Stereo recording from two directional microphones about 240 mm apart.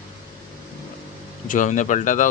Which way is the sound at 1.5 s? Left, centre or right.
Left.